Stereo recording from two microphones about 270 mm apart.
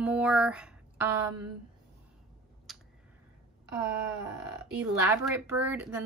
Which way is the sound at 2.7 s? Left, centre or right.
Centre.